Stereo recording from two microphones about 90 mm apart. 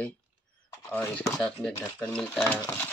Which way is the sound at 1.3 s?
10° left (ahead or behind).